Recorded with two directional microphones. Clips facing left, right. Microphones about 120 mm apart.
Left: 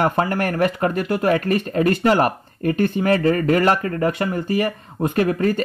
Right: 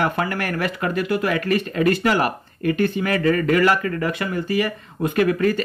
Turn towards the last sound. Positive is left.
turn(degrees=35)  # may be behind; listen again after turning